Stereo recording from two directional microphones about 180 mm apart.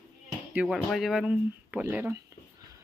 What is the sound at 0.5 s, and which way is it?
Speech, 5° right (ahead or behind).